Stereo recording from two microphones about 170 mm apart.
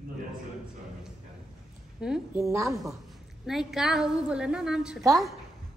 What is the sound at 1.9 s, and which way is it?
Speech, 5° right (ahead or behind).